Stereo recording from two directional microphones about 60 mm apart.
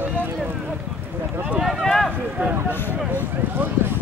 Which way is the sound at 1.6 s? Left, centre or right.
Centre.